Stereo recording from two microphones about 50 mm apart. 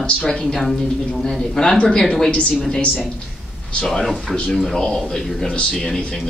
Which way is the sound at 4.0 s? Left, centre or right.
Centre.